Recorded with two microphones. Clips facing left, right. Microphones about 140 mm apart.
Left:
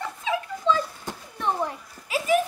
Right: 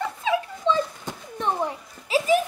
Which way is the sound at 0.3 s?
25° right (ahead or behind).